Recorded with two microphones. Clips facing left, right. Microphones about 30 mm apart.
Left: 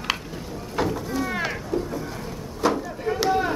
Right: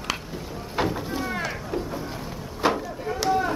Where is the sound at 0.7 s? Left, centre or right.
Centre.